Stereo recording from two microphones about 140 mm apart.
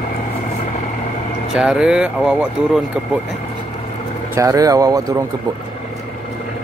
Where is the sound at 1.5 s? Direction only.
5° right (ahead or behind).